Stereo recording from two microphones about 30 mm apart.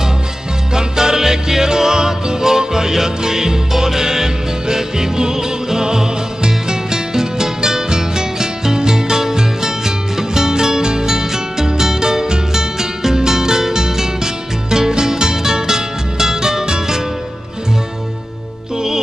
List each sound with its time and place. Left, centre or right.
0.7 s music: right